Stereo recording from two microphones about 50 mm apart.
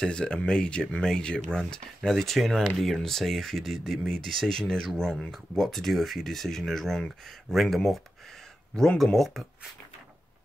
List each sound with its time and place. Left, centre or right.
0.0 s speech: centre